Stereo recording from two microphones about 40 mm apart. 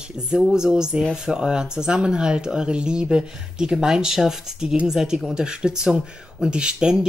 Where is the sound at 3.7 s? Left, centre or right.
Centre.